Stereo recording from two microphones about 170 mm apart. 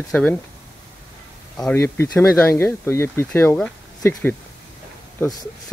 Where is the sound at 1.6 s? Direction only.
15° left (ahead or behind).